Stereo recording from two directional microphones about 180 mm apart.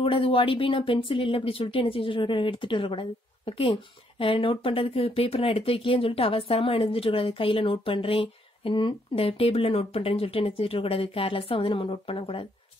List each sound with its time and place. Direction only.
0.0 s speech: 30° left (ahead or behind)